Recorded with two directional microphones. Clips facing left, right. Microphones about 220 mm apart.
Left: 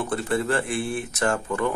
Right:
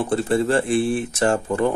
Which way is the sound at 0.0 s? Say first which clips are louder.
Right 5 dB; 30° right (ahead or behind).